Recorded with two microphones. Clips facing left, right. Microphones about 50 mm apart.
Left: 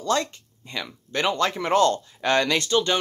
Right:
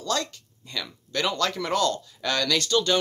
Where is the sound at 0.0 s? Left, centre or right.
Left.